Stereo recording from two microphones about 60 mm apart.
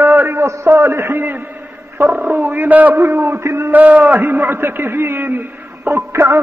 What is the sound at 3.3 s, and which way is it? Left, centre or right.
Speech, right.